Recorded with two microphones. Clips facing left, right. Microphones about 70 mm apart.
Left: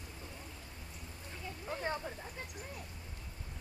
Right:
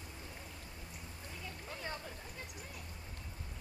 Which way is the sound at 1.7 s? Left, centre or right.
Left.